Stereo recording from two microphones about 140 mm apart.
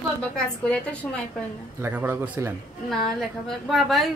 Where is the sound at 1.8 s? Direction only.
15° right (ahead or behind).